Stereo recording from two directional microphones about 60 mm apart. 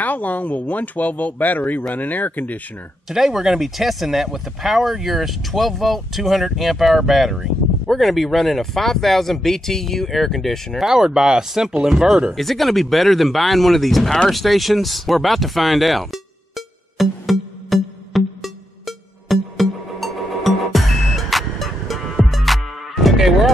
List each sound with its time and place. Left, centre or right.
0.0 s speech: left
3.1 s speech: centre
10.8 s speech: centre
12.4 s speech: centre
14.3 s a sound: centre
19.5 s music: centre